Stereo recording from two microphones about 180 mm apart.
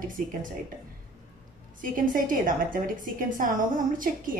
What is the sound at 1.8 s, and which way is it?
A woman's voice, 50° right (ahead or behind).